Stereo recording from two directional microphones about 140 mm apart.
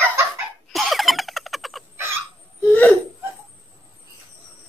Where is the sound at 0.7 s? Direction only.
Centre (ahead or behind).